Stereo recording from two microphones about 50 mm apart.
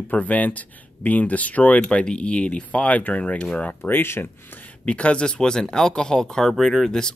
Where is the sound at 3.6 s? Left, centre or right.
Left.